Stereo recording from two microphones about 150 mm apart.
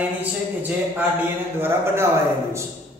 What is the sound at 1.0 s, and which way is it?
Speech, 15° right (ahead or behind).